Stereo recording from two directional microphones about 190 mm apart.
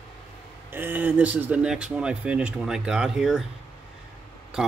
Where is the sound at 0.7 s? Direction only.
10° right (ahead or behind).